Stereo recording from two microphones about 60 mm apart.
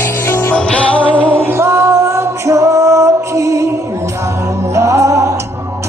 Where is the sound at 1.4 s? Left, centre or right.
Right.